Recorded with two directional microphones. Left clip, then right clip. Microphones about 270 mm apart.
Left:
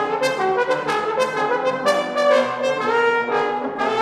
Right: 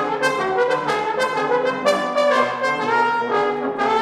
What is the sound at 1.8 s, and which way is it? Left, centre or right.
Brass instrument, centre.